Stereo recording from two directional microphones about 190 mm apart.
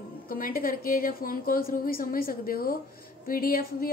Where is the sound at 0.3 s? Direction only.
50° left (ahead or behind).